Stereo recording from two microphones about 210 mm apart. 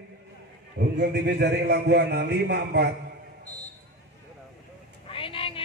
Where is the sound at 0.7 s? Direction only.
50° right (ahead or behind).